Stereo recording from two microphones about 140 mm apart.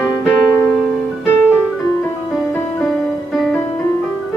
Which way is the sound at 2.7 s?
10° left (ahead or behind).